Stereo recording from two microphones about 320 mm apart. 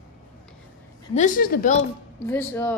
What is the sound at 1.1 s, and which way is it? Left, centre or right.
Speech, left.